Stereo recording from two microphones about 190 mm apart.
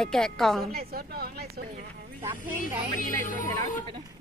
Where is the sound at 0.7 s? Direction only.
55° right (ahead or behind).